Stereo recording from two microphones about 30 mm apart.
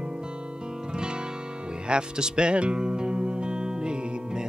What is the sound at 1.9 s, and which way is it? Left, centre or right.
Music, right.